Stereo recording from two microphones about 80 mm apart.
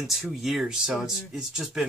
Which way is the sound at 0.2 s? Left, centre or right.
Centre.